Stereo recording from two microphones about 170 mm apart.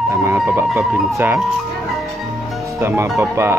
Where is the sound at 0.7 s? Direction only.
Centre (ahead or behind).